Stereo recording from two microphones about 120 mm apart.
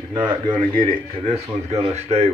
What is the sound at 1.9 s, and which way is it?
Speech, 65° right (ahead or behind).